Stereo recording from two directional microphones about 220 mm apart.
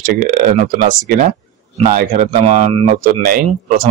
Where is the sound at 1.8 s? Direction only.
35° right (ahead or behind).